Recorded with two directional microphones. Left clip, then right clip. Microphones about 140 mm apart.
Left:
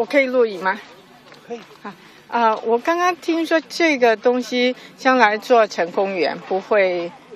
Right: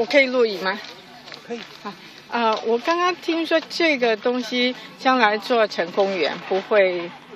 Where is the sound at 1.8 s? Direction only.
25° left (ahead or behind).